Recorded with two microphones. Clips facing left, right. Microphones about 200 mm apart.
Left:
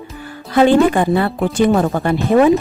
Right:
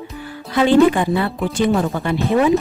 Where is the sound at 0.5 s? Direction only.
50° left (ahead or behind).